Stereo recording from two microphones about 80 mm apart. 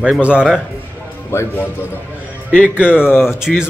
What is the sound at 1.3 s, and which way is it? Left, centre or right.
Speech, left.